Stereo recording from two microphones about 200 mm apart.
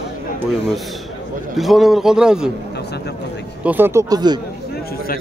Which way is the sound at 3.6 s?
10° right (ahead or behind).